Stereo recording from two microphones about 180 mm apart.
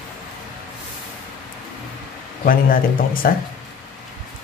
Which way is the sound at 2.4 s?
55° left (ahead or behind).